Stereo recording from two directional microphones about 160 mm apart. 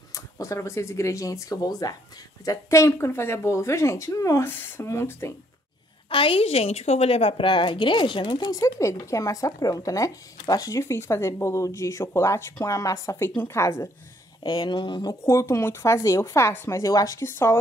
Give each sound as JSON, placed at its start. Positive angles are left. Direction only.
{"t": 0.1, "sound": "a woman's voice", "side_deg": 20}
{"t": 6.0, "sound": "a woman's voice", "side_deg": 35}
{"t": 14.4, "sound": "a woman's voice", "side_deg": 25}
{"t": 15.2, "sound": "speech", "side_deg": 15}